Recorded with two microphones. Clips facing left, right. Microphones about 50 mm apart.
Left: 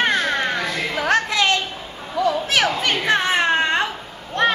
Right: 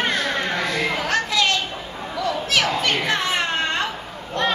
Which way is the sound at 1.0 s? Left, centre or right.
Left.